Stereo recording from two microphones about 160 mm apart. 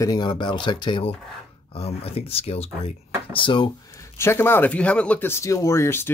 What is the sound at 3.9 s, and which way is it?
Speech, 15° left (ahead or behind).